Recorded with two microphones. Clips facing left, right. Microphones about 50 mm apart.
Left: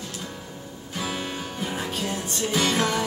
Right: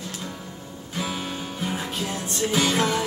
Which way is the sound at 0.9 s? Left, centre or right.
Centre.